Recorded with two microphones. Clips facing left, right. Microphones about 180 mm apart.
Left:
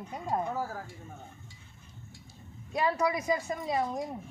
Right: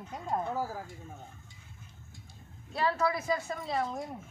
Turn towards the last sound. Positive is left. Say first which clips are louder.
# left 2 dB
turn(degrees=15)  # may be behind; listen again after turning